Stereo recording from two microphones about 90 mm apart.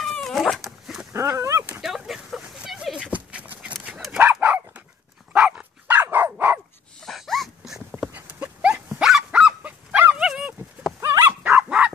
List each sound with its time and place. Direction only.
0.2 s dog: 5° left (ahead or behind)
1.1 s dog: 30° right (ahead or behind)
1.8 s a sound: 5° right (ahead or behind)
3.1 s horse: 15° right (ahead or behind)
3.8 s dog: 5° right (ahead or behind)
4.2 s dog: 20° right (ahead or behind)
7.1 s dog: 5° left (ahead or behind)
8.1 s dog: 15° right (ahead or behind)
11.0 s dog: 30° right (ahead or behind)
11.4 s dog: 15° right (ahead or behind)